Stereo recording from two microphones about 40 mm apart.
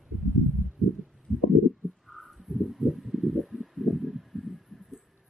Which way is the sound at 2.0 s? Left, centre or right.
Centre.